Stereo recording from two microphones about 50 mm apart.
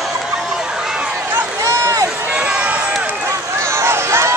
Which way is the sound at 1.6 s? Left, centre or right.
Right.